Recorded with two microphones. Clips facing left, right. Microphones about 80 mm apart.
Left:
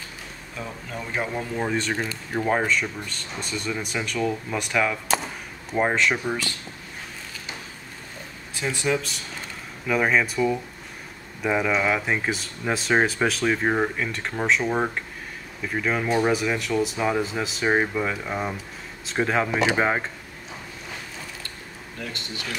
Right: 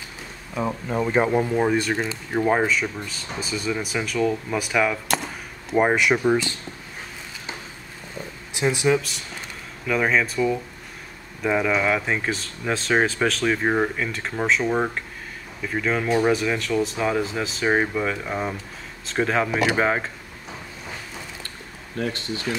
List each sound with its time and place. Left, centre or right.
0.6 s speech: right; by 6.5 s centre
8.5 s speech: centre
22.5 s speech: right